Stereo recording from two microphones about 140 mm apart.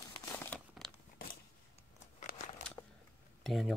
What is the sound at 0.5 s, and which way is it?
Crumpling, centre (ahead or behind).